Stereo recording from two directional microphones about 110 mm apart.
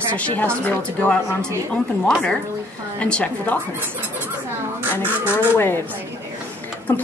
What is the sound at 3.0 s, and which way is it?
Speech, 10° left (ahead or behind).